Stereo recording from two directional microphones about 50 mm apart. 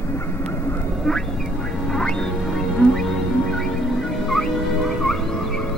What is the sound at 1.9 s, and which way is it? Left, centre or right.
Music, centre.